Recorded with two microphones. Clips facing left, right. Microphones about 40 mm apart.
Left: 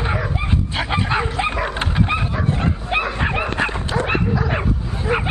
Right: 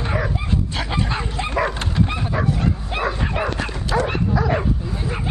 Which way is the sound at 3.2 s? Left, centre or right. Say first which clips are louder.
Left 3 dB; left.